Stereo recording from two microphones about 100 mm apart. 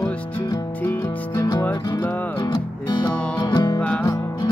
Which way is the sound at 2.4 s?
50° left (ahead or behind).